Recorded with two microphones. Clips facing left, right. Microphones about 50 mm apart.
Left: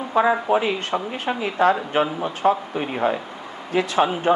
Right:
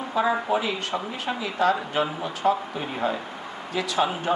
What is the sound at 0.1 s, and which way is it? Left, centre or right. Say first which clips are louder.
A man's voice: left 5 dB; left.